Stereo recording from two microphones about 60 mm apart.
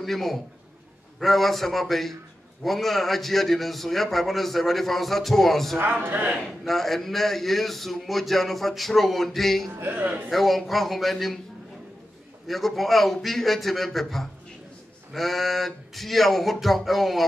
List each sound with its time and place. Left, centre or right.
0.0 s a man's voice: centre
5.8 s speech: right
6.3 s a man's voice: centre
9.7 s a man's voice: right
10.3 s a man's voice: centre
12.4 s a man's voice: centre